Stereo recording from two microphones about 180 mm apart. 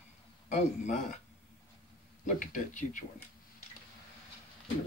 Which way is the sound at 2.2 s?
45° left (ahead or behind).